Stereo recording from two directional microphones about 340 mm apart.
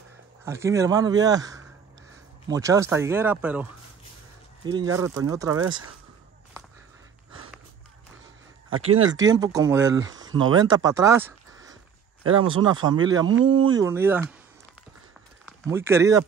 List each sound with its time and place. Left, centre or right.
0.5 s speech: centre
4.6 s speech: centre
8.8 s speech: right
9.2 s speech: centre
12.2 s speech: right
12.4 s speech: centre
15.4 s speech: centre